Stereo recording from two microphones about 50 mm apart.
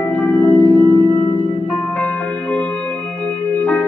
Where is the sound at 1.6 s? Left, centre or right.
Left.